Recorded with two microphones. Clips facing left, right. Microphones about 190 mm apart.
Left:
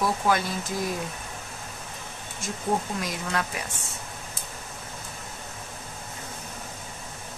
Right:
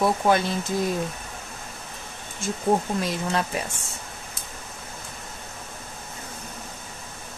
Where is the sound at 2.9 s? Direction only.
30° right (ahead or behind).